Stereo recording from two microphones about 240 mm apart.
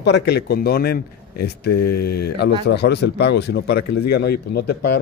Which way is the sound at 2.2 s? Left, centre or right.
Left.